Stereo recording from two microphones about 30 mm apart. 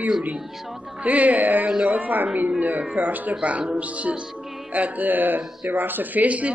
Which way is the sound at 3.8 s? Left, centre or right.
Right.